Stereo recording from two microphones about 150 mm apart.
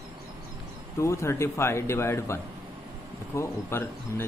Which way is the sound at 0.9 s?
20° left (ahead or behind).